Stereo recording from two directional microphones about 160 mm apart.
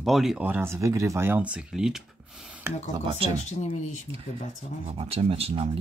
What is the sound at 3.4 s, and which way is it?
Speech, 45° left (ahead or behind).